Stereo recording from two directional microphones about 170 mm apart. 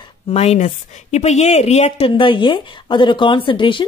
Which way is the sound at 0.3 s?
40° left (ahead or behind).